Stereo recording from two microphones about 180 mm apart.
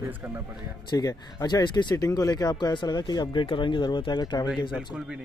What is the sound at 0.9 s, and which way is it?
Speech, 20° left (ahead or behind).